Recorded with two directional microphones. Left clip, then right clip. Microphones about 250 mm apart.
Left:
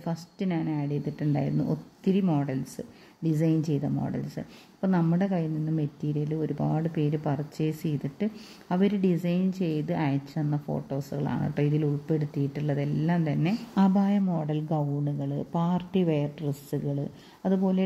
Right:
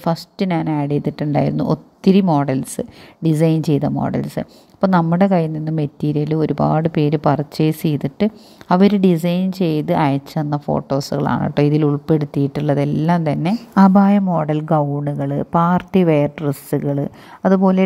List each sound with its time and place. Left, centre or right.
0.0 s a woman's voice: right